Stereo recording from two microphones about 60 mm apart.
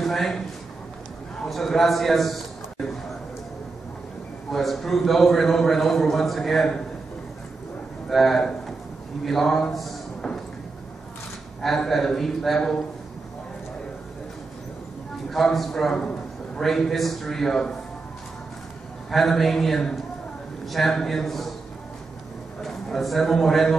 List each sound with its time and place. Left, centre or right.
0.0 s a man's voice: centre
1.4 s a man's voice: centre
4.5 s a man's voice: centre
8.1 s a man's voice: centre
11.6 s a man's voice: centre
15.3 s a man's voice: centre
16.0 s a sound: centre
16.6 s a man's voice: centre
19.0 s a man's voice: centre
22.6 s a man's voice: centre